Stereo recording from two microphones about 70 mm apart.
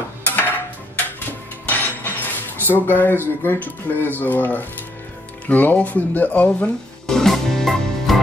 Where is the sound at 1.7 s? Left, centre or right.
Left.